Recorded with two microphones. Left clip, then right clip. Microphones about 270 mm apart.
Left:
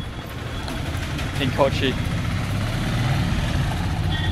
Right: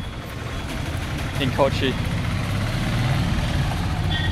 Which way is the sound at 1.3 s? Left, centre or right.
Centre.